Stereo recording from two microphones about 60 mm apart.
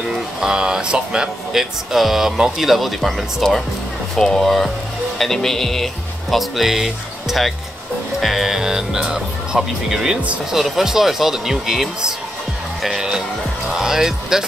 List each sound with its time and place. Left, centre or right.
0.1 s speech: centre